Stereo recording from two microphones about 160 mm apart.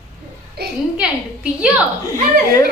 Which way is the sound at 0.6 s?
90° right.